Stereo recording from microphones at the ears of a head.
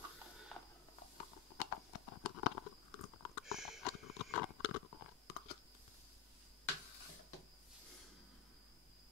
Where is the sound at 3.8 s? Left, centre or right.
Left.